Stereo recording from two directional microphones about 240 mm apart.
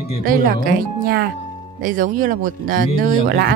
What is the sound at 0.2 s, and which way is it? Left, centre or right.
Speech, right.